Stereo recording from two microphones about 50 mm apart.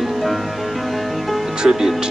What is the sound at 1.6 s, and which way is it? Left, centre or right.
Speech, centre.